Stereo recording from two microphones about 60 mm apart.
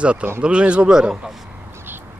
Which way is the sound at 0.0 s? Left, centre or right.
Centre.